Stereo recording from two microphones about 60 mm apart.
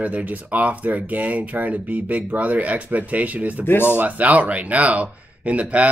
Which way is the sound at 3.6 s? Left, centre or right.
Left.